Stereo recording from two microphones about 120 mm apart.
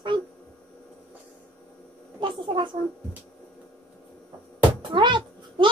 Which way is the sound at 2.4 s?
40° right (ahead or behind).